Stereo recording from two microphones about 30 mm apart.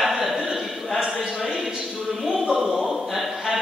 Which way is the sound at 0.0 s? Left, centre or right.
Centre.